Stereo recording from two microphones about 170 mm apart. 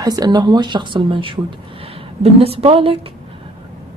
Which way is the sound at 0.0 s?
25° right (ahead or behind).